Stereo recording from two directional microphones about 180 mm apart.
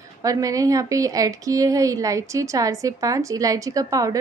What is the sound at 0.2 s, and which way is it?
A woman's voice, 20° right (ahead or behind).